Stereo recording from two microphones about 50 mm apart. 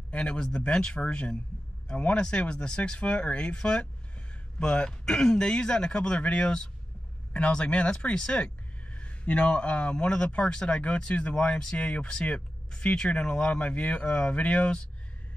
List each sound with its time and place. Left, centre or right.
0.1 s speech: centre